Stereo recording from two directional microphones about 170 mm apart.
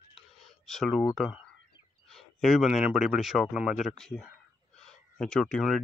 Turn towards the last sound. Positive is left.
turn(degrees=0)  # may be behind; listen again after turning